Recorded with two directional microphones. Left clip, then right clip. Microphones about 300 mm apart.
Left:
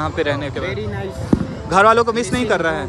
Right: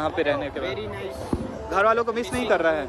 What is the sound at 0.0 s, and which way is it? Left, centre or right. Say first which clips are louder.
Speech: left 3 dB; centre.